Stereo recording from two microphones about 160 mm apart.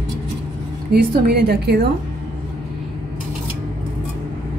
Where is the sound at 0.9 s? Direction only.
85° right.